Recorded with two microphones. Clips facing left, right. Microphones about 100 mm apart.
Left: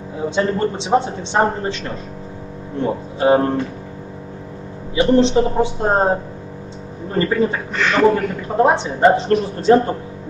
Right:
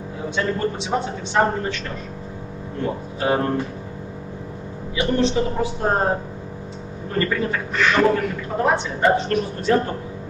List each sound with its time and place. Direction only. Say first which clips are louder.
0.4 s speech: left 4 dB; 25° left (ahead or behind)
2.8 s speech: left 6 dB; 25° left (ahead or behind)
4.9 s speech: left 6 dB; 30° left (ahead or behind)
7.2 s speech: left 5 dB; 25° left (ahead or behind)